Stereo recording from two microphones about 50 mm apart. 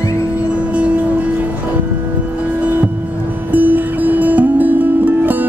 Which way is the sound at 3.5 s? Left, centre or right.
Right.